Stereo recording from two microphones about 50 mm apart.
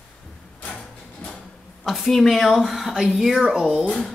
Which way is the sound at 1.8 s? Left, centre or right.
Centre.